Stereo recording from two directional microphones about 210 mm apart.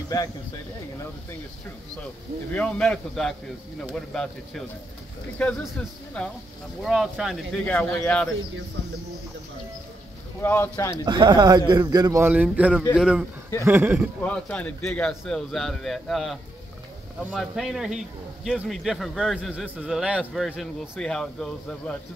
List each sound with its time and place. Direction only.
0.1 s speech: 15° left (ahead or behind)
2.5 s a man's voice: 5° left (ahead or behind)
6.8 s a man's voice: centre (ahead or behind)
10.4 s speech: 10° left (ahead or behind)
11.1 s a man's voice: 20° right (ahead or behind)
14.2 s a man's voice: 5° left (ahead or behind)